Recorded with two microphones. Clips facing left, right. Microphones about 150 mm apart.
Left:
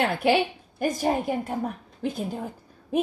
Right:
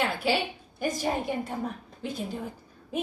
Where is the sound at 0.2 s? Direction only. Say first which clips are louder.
Left 6 dB; 55° left (ahead or behind).